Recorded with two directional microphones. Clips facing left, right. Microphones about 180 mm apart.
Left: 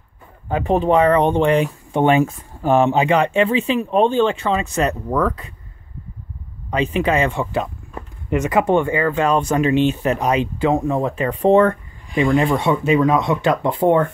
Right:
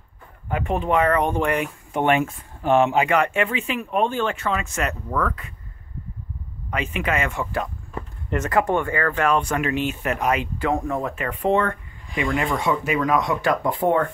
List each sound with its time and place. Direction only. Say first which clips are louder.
0.5 s speech: left 6 dB; 30° left (ahead or behind)
6.7 s speech: left 7 dB; 30° left (ahead or behind)